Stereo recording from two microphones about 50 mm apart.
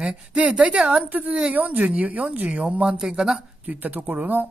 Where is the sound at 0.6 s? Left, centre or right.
Right.